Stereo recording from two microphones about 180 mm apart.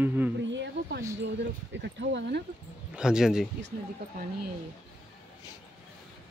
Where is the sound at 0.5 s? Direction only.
75° right (ahead or behind).